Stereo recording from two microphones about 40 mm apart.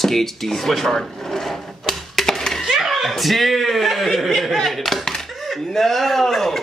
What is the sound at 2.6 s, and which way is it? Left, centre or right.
Chuckle, centre.